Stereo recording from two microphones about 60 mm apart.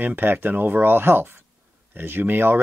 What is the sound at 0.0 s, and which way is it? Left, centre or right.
Speech, right.